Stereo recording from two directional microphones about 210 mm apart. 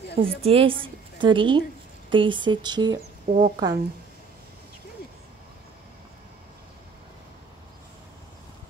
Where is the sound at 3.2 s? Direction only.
35° right (ahead or behind).